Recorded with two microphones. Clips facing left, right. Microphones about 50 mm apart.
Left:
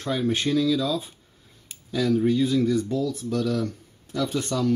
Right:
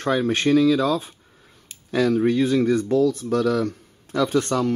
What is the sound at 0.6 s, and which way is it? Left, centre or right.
Speech, right.